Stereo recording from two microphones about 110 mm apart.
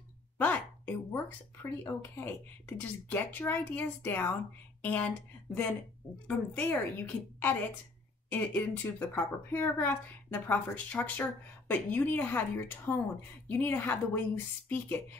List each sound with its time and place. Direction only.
0.4 s a woman's voice: 15° left (ahead or behind)